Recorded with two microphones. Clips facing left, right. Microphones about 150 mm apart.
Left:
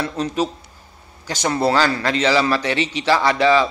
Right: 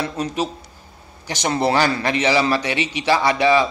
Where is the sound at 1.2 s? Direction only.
20° right (ahead or behind).